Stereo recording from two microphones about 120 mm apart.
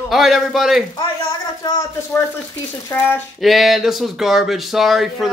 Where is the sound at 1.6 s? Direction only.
20° left (ahead or behind).